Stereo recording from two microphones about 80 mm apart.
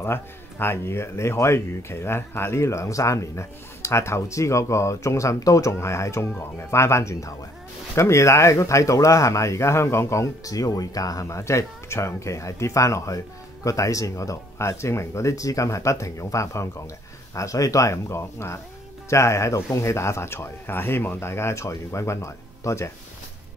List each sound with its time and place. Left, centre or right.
0.0 s speech: left